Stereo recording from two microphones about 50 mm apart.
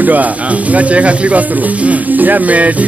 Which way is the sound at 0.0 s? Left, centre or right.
Right.